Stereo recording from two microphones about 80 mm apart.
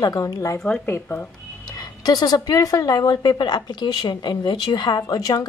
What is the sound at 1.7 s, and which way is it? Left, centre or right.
A woman's voice, left.